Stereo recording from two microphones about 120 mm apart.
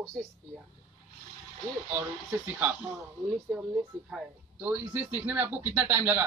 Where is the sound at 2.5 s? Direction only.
20° right (ahead or behind).